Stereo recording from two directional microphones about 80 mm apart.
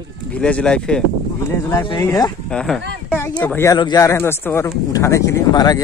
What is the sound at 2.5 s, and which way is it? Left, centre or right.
Speech, centre.